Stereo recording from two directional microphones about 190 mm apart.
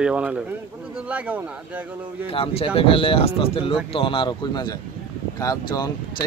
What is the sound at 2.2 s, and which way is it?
Speech, 30° left (ahead or behind).